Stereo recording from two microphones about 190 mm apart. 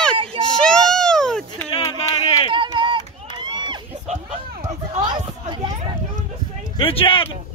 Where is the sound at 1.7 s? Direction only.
20° left (ahead or behind).